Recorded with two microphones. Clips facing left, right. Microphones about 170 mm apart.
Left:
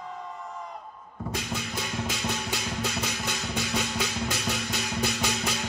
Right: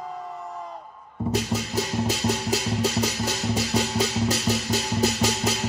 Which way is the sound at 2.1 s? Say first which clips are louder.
Right 7 dB; 35° right (ahead or behind).